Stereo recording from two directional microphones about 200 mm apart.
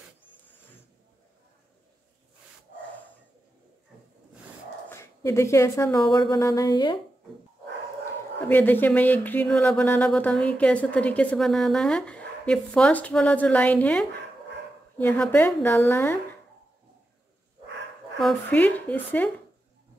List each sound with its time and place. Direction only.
4.8 s speech: 15° left (ahead or behind)
8.5 s speech: 10° left (ahead or behind)
18.2 s speech: 5° left (ahead or behind)